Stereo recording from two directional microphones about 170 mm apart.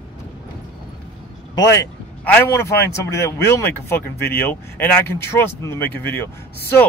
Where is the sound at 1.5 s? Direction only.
20° left (ahead or behind).